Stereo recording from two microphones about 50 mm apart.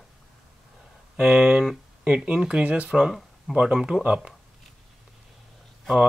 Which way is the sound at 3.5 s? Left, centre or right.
Centre.